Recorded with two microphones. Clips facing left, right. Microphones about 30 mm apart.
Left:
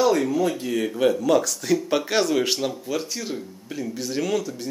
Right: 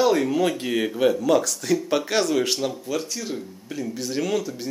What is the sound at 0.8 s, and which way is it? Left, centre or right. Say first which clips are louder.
Speech: even; centre.